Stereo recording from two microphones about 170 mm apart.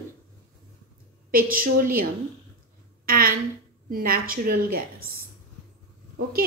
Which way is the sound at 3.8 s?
60° right (ahead or behind).